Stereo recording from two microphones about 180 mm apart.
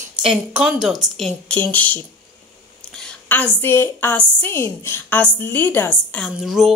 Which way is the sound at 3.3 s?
10° left (ahead or behind).